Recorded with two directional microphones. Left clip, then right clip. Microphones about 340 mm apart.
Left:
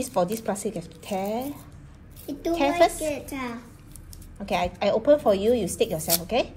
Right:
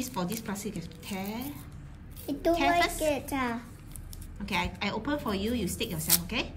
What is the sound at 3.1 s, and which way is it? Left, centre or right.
Speech, centre.